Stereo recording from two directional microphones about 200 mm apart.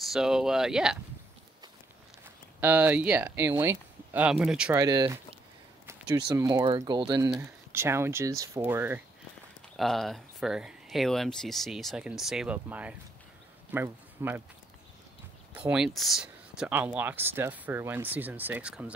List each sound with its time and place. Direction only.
0.1 s speech: centre (ahead or behind)
2.2 s speech: 10° right (ahead or behind)
4.7 s speech: 20° right (ahead or behind)
9.8 s a man's voice: centre (ahead or behind)
15.5 s speech: 5° right (ahead or behind)